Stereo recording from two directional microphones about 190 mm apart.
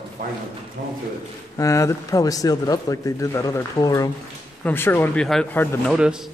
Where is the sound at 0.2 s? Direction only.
50° right (ahead or behind).